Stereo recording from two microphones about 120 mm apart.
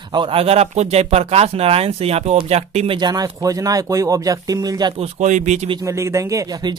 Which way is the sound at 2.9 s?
35° right (ahead or behind).